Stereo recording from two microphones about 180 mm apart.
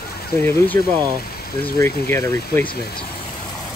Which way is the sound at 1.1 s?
60° left (ahead or behind).